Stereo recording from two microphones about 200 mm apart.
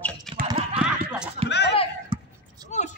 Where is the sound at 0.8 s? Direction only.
5° right (ahead or behind).